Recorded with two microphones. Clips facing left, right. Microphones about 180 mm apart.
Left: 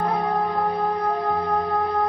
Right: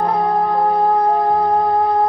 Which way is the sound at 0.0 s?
30° right (ahead or behind).